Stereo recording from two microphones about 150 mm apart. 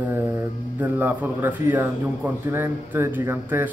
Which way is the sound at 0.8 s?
10° right (ahead or behind).